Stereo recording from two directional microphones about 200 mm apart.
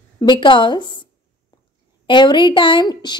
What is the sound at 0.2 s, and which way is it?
Speech, 25° left (ahead or behind).